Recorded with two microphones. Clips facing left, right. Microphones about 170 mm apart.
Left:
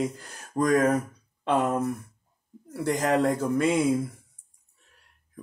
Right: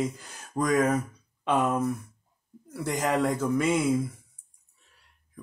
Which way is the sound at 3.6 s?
35° left (ahead or behind).